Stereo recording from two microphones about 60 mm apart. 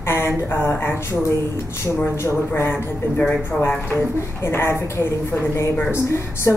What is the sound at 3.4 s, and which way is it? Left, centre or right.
Speech, left.